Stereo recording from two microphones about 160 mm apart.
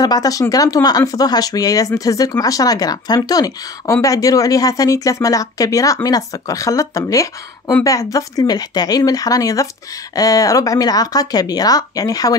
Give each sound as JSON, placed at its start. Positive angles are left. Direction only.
{"t": 0.0, "sound": "speech", "side_deg": 25}